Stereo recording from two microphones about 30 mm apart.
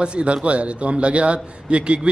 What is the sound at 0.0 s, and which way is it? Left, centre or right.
A man's voice, right.